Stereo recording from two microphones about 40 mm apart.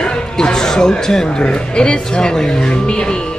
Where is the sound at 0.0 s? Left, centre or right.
Centre.